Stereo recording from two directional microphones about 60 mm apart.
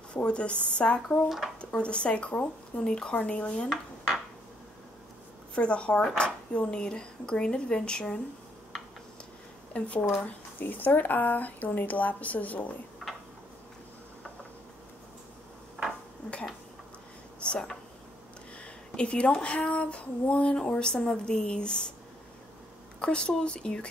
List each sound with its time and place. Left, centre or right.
0.1 s speech: centre
5.5 s speech: centre
9.8 s speech: left
15.8 s dishes: centre
17.4 s a sound: centre
18.9 s speech: centre
22.9 s speech: centre